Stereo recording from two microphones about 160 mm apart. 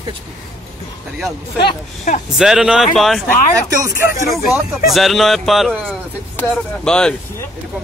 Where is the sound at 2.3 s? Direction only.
5° right (ahead or behind).